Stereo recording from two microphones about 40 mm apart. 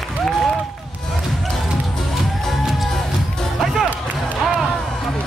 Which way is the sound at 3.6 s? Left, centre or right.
Centre.